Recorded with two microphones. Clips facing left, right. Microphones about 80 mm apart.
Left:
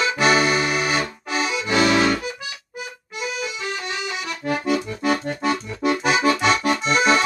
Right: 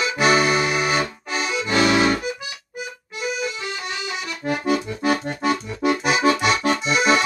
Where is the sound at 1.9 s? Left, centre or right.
Centre.